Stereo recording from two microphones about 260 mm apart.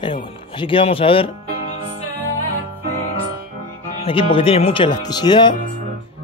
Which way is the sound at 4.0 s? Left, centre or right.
Left.